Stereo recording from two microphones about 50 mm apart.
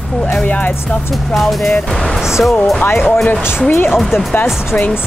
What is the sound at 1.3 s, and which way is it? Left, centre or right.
Speech, centre.